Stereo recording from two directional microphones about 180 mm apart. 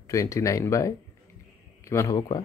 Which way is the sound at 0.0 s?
15° left (ahead or behind).